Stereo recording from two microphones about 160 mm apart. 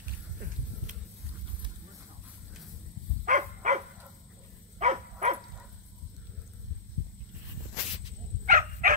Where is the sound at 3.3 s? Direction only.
50° right (ahead or behind).